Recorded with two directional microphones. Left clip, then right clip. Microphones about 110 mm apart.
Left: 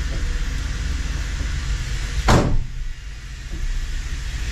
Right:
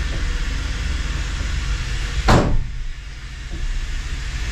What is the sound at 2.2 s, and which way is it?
Door, 15° left (ahead or behind).